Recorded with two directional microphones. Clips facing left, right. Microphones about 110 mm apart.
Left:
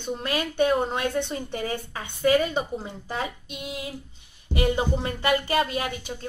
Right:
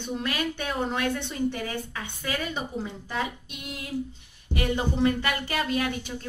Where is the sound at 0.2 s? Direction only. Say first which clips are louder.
Left 9 dB; 30° left (ahead or behind).